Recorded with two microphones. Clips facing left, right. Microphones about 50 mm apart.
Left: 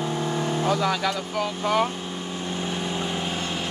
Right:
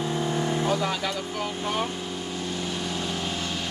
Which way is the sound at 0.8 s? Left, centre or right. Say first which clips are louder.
Left 3 dB; left.